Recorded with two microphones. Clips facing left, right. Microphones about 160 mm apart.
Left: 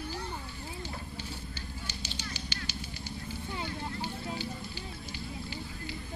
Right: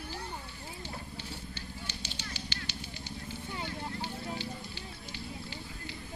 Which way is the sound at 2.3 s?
25° right (ahead or behind).